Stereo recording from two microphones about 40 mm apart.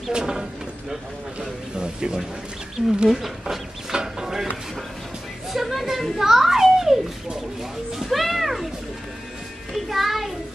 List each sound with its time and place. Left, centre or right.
0.1 s speech: centre
3.1 s chicken: centre
5.5 s a child's voice: centre
8.1 s music: centre
9.8 s speech: centre